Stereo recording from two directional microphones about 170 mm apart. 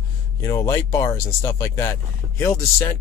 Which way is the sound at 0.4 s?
15° left (ahead or behind).